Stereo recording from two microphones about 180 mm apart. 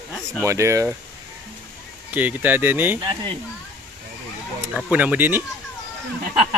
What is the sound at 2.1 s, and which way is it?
Speech, 10° right (ahead or behind).